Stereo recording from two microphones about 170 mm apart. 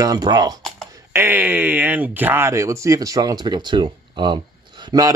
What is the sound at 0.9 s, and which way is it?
Speech, 15° right (ahead or behind).